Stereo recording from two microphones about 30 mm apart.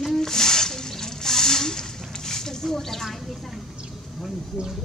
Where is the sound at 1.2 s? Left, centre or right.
Centre.